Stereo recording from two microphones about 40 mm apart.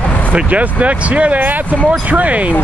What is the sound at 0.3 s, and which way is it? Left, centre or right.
Speech, right.